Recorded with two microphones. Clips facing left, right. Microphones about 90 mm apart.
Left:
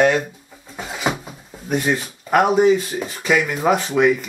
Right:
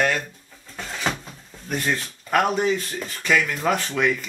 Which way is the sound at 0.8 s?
10° left (ahead or behind).